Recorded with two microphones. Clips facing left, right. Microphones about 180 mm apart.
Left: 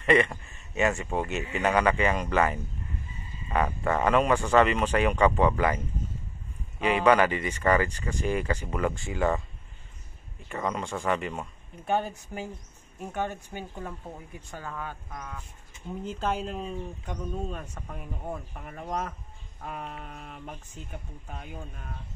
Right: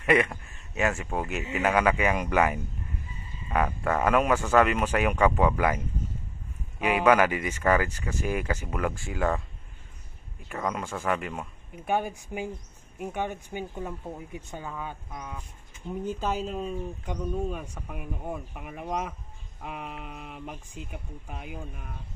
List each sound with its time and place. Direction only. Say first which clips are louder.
0.0 s speech: left 1 dB; 10° right (ahead or behind)
6.8 s speech: even; 5° right (ahead or behind)
10.5 s speech: even; 5° right (ahead or behind)